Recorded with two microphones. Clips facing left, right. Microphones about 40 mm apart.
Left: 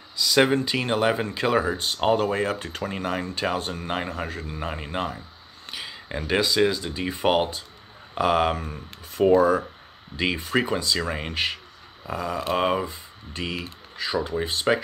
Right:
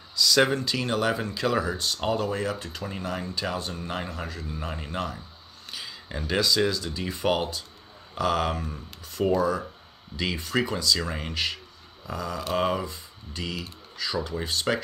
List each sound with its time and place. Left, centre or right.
0.1 s speech: left
8.5 s speech: left